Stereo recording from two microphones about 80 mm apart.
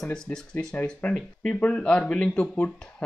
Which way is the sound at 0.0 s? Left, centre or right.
Centre.